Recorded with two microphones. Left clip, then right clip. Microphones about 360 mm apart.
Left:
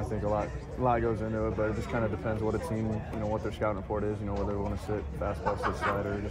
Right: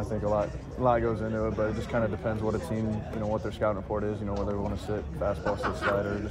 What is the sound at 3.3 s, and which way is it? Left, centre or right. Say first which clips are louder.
Speech: right 3 dB; centre.